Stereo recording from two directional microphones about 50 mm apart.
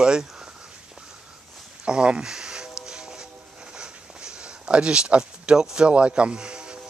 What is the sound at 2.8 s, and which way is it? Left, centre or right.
Music, centre.